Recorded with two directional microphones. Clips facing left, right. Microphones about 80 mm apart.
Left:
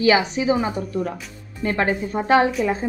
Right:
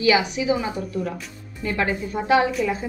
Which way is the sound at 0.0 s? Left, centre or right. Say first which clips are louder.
Left 2 dB; left.